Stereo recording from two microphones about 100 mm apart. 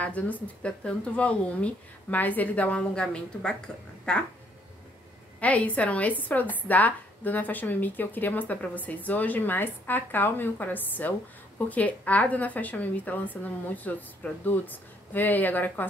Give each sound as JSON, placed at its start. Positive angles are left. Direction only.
{"t": 0.0, "sound": "speech", "side_deg": 15}
{"t": 5.4, "sound": "speech", "side_deg": 15}